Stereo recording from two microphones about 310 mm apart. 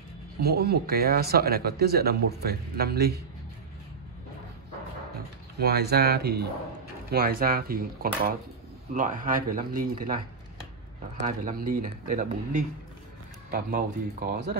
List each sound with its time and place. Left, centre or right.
0.4 s speech: right
5.6 s speech: right
11.2 s speech: right